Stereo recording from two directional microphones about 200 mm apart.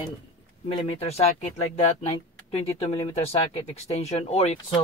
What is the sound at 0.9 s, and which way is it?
Speech, 30° left (ahead or behind).